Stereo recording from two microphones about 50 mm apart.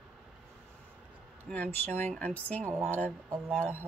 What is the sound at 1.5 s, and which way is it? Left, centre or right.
Speech, left.